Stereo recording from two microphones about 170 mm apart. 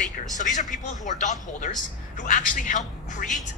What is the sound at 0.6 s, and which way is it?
Speech, 45° left (ahead or behind).